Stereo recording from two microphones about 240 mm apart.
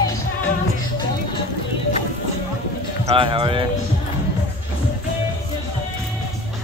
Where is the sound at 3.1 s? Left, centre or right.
Right.